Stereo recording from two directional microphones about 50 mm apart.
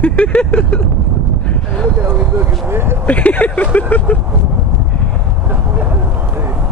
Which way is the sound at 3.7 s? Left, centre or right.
Left.